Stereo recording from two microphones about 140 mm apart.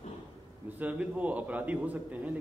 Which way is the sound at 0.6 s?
10° right (ahead or behind).